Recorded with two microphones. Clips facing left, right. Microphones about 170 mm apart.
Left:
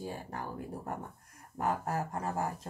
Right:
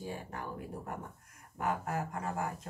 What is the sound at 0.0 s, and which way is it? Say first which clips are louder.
Speech: left 1 dB; 35° left (ahead or behind).